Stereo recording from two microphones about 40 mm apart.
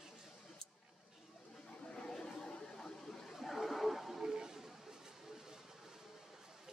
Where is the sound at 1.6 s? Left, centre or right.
Left.